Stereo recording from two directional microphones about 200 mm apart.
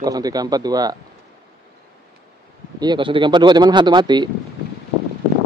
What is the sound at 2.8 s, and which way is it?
Speech, 25° right (ahead or behind).